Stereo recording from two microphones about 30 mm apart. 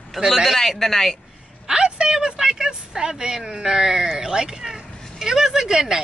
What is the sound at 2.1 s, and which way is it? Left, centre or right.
A woman's voice, centre.